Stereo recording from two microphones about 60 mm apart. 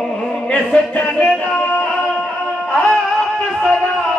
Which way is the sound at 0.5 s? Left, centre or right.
Left.